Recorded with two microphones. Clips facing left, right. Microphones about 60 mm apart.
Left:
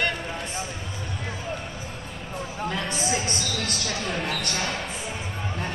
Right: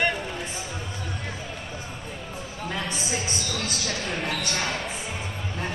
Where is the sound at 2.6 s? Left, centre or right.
Centre.